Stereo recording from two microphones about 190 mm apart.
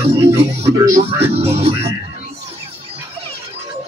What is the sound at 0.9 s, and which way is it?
Speech, 30° right (ahead or behind).